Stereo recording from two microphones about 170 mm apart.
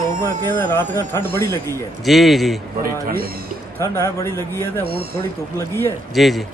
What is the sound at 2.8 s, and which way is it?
Speech, 60° right (ahead or behind).